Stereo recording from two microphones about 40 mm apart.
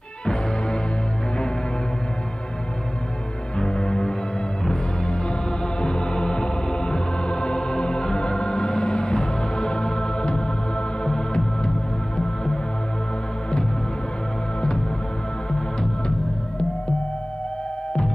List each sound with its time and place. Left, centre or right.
0.2 s music: left
3.5 s music: left
11.1 s organ: left